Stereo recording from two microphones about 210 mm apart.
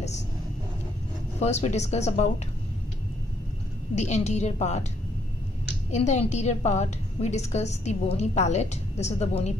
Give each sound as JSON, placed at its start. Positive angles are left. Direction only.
{"t": 1.4, "sound": "a woman's voice", "side_deg": 30}
{"t": 3.9, "sound": "a woman's voice", "side_deg": 35}
{"t": 5.9, "sound": "a woman's voice", "side_deg": 35}